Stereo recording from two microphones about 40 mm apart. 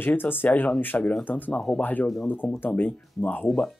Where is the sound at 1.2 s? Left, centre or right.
Left.